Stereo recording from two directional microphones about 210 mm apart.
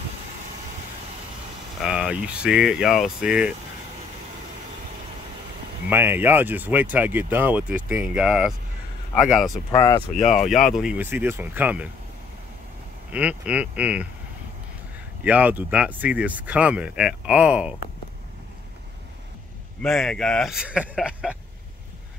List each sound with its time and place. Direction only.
1.8 s speech: 5° right (ahead or behind)
5.9 s speech: 10° right (ahead or behind)
9.8 s speech: 15° left (ahead or behind)
10.1 s speech: 35° left (ahead or behind)
10.5 s speech: centre (ahead or behind)
13.1 s speech: 5° right (ahead or behind)
15.2 s speech: 5° right (ahead or behind)
19.8 s speech: centre (ahead or behind)